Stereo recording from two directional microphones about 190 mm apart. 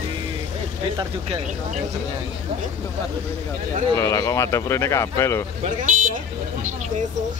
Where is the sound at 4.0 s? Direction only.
15° left (ahead or behind).